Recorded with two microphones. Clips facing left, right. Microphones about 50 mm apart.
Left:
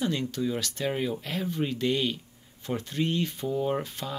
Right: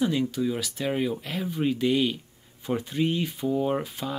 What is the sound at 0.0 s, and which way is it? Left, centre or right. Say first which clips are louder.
Speech: right 4 dB; centre.